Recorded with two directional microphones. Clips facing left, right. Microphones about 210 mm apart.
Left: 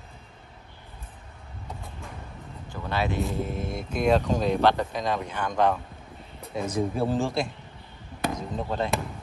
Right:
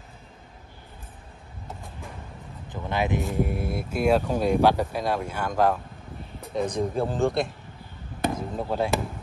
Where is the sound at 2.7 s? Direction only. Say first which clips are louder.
Right 2 dB; 20° right (ahead or behind); by 7.5 s centre (ahead or behind).